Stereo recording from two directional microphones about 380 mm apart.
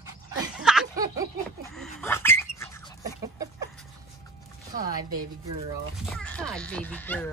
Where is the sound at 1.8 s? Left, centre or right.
Centre.